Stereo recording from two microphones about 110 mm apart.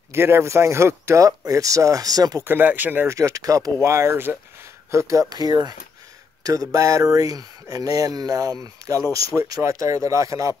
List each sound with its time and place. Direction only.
0.1 s speech: 25° right (ahead or behind)
2.4 s speech: 20° right (ahead or behind)
3.2 s speech: 30° right (ahead or behind)
8.8 s a sound: 30° right (ahead or behind)
9.1 s speech: 30° right (ahead or behind)